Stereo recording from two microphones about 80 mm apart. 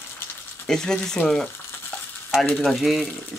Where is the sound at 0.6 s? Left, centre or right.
Centre.